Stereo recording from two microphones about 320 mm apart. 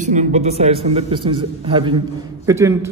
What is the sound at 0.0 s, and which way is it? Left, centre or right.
A man's voice, right.